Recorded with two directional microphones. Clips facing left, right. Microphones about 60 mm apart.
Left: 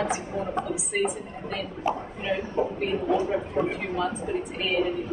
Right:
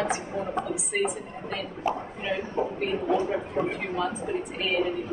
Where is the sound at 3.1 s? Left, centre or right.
Right.